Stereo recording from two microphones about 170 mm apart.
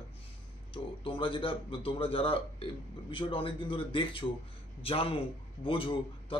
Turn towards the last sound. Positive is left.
turn(degrees=30)  # may be behind; listen again after turning